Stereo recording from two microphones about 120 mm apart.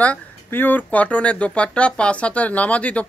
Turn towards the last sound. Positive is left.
turn(degrees=10)  # may be behind; listen again after turning